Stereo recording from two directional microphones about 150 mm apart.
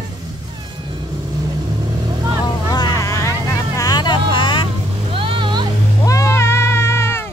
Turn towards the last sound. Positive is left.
turn(degrees=15)  # may be behind; listen again after turning